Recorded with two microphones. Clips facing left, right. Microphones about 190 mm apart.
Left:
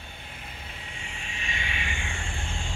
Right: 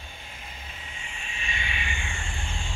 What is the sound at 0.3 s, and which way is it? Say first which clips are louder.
Vehicle: left 2 dB; 60° left (ahead or behind).